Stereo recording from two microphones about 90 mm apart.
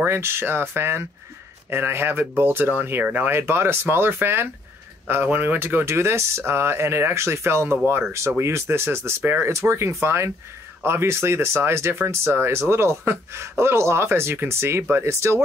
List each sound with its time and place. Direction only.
0.0 s speech: 30° right (ahead or behind)